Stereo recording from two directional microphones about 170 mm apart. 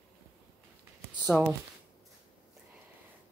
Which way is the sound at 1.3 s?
5° right (ahead or behind).